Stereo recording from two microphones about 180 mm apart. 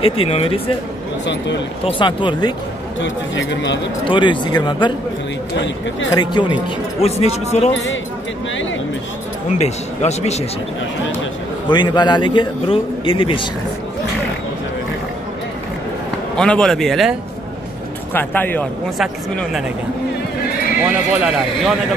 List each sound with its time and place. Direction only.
0.0 s speech: 30° left (ahead or behind)
1.2 s speech: 80° left
1.9 s a man's voice: 25° left (ahead or behind)
3.0 s speech: 85° left
4.0 s a man's voice: 25° left (ahead or behind)
6.1 s speech: 25° left (ahead or behind)
7.7 s speech: 90° left
9.5 s speech: 40° left (ahead or behind)
11.6 s a man's voice: 25° left (ahead or behind)
16.3 s a man's voice: 5° left (ahead or behind)
18.1 s speech: 10° left (ahead or behind)
18.9 s a man's voice: centre (ahead or behind)
21.1 s a man's voice: 5° right (ahead or behind)